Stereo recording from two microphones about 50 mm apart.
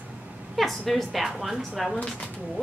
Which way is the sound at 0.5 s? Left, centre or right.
Centre.